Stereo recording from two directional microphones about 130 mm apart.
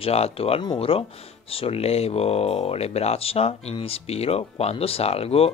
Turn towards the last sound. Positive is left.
turn(degrees=50)  # may be behind; listen again after turning